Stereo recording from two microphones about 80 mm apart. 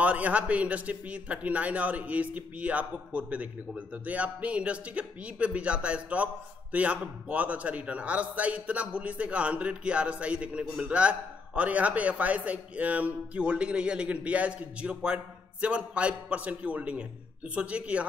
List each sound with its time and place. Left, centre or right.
0.0 s a man's voice: centre